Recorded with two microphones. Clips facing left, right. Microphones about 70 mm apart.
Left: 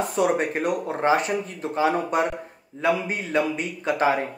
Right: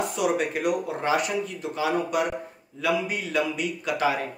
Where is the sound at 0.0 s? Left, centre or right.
Left.